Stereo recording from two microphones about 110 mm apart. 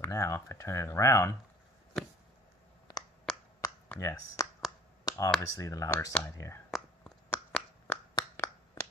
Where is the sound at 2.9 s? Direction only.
35° left (ahead or behind).